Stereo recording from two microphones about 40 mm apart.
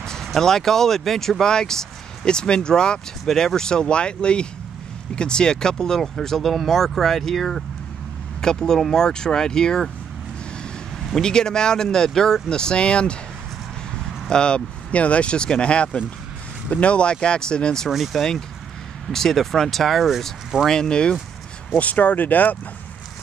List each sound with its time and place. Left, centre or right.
0.0 s a sound: centre
0.4 s speech: centre
11.1 s speech: centre
14.3 s speech: left
14.9 s speech: left
17.8 s speech: centre
20.6 s speech: centre
21.7 s speech: left